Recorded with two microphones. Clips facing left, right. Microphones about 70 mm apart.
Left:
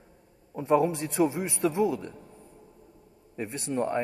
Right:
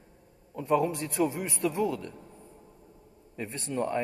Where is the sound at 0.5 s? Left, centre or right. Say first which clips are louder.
Left 3 dB; left.